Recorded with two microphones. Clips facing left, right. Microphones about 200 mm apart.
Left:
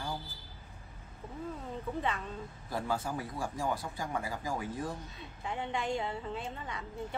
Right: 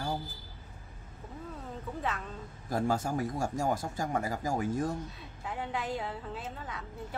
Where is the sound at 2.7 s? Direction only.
45° right (ahead or behind).